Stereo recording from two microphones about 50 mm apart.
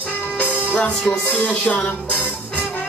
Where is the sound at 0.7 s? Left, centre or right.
Left.